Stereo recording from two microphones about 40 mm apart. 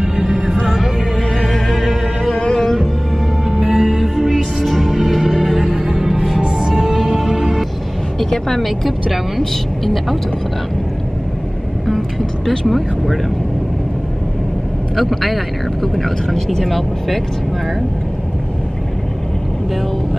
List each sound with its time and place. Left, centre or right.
0.0 s music: centre
1.5 s music: centre
2.3 s music: centre
3.4 s music: centre
4.6 s music: centre
8.2 s a woman's voice: centre
12.4 s a woman's voice: centre
15.0 s a woman's voice: centre